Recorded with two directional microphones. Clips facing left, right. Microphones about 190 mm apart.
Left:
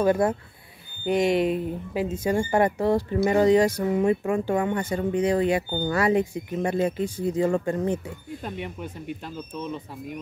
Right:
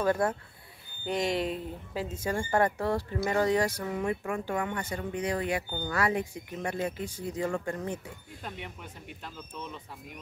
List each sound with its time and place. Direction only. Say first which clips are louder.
0.0 s speech: left 6 dB; 15° left (ahead or behind)